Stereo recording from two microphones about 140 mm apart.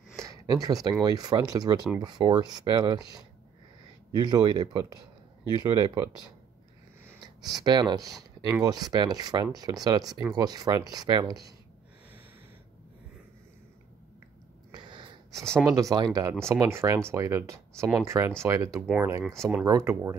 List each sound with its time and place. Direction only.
0.3 s a sound: 25° right (ahead or behind)
1.0 s speech: 25° right (ahead or behind)
4.1 s speech: 30° right (ahead or behind)
7.4 s speech: 30° right (ahead or behind)
14.7 s a sound: 35° right (ahead or behind)
15.3 s speech: 5° left (ahead or behind)
15.6 s speech: 25° right (ahead or behind)
18.8 s speech: 5° right (ahead or behind)
19.6 s speech: 20° right (ahead or behind)